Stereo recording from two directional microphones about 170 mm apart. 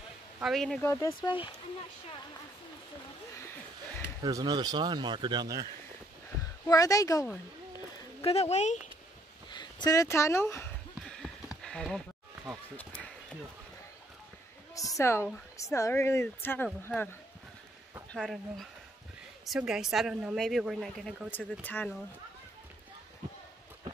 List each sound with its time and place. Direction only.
0.4 s a woman's voice: centre (ahead or behind)
1.2 s speech: 30° left (ahead or behind)
4.2 s speech: 25° right (ahead or behind)
6.7 s speech: 20° left (ahead or behind)
8.2 s speech: 35° left (ahead or behind)
9.5 s speech: 25° left (ahead or behind)
11.1 s a sound: 5° left (ahead or behind)
12.7 s speech: 10° left (ahead or behind)
14.8 s a sound: 20° left (ahead or behind)
15.5 s speech: 20° left (ahead or behind)
18.1 s a woman's voice: 5° left (ahead or behind)
21.3 s speech: 10° left (ahead or behind)